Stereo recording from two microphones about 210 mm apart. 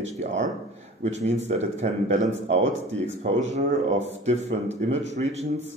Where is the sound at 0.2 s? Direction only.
35° right (ahead or behind).